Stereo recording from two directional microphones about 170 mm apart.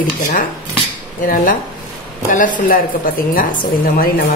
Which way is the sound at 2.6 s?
55° left (ahead or behind).